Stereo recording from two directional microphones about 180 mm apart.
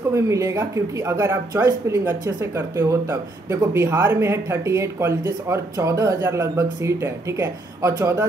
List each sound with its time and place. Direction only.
0.1 s speech: 15° right (ahead or behind)